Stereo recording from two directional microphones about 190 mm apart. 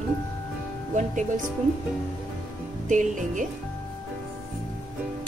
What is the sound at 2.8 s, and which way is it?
Speech, 40° right (ahead or behind).